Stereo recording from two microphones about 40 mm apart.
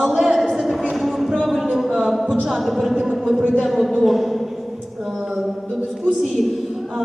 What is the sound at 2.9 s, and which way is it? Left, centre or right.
Speech, centre.